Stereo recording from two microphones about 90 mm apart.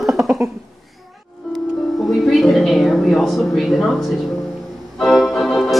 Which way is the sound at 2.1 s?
Centre (ahead or behind).